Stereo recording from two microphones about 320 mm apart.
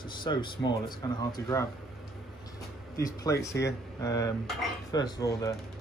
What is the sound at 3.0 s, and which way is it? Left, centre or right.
Dishes, centre.